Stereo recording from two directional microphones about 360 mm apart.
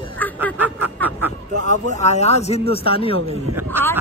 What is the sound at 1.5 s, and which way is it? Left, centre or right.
A woman's voice, centre.